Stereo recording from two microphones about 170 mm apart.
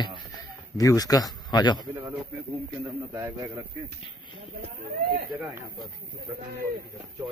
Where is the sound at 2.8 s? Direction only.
20° right (ahead or behind).